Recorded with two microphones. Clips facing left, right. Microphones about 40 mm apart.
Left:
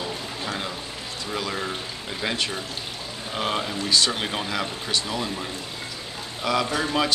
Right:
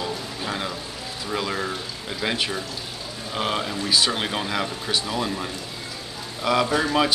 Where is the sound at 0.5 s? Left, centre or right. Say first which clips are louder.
Right 2 dB; centre.